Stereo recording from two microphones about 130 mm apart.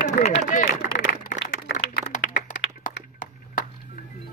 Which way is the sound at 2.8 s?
90° left.